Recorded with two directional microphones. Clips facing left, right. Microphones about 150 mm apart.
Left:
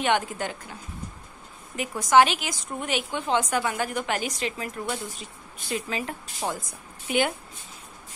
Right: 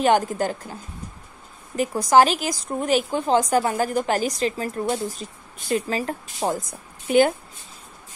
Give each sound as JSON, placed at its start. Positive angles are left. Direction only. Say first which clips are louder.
{"t": 0.0, "sound": "a woman's voice", "louder": "right 6 dB", "side_deg": -40}
{"t": 1.8, "sound": "a woman's voice", "louder": "right 3 dB", "side_deg": -35}